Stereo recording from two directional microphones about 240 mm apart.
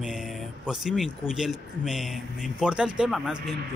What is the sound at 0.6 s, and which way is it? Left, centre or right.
Speech, centre.